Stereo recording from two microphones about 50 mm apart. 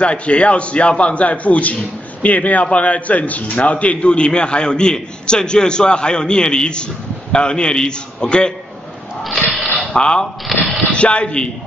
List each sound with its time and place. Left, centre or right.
0.0 s a man's voice: left
9.9 s a man's voice: centre
10.2 s a sound: centre
10.9 s a man's voice: left